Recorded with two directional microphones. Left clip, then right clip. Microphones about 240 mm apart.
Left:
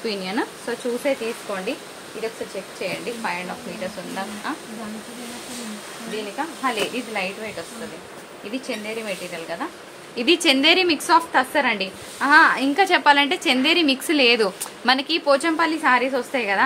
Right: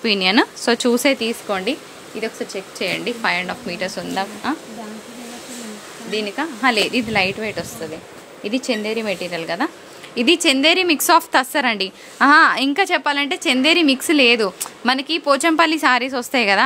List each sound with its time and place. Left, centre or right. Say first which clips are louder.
0.0 s a woman's voice: right 9 dB; right
2.8 s a woman's voice: right 6 dB; right
6.3 s speech: right 7 dB; right
10.1 s a woman's voice: right 2 dB; right
12.7 s a woman's voice: left 2 dB; right